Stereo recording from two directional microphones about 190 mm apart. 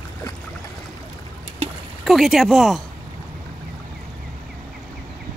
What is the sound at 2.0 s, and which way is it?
Speech, centre (ahead or behind).